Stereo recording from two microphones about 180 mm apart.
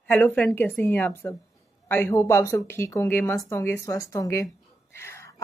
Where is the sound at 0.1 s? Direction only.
10° left (ahead or behind).